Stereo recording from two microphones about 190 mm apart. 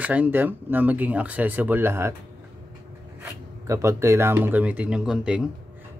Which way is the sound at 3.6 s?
15° right (ahead or behind).